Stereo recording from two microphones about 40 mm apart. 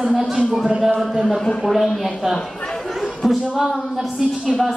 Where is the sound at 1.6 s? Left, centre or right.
Centre.